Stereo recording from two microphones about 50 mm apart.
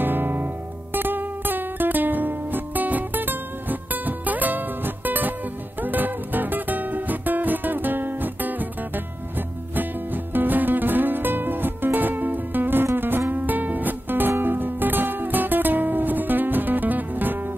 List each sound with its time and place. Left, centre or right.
0.0 s music: right